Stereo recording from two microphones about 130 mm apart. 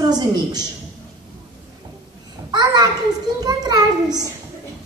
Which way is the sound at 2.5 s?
30° right (ahead or behind).